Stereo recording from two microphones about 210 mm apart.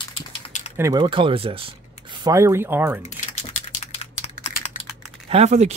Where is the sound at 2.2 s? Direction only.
15° right (ahead or behind).